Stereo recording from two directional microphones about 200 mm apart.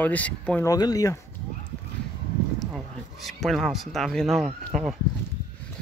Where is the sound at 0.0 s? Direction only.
5° left (ahead or behind).